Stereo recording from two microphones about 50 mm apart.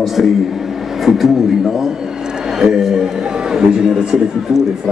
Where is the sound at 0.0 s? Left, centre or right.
Centre.